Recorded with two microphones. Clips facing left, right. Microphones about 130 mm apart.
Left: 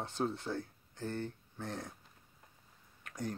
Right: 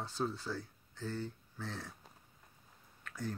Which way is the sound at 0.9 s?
55° left (ahead or behind).